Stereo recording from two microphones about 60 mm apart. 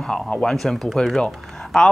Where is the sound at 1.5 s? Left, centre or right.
Centre.